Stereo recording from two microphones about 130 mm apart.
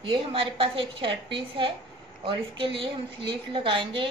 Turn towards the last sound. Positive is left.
turn(degrees=-40)  # may be behind; listen again after turning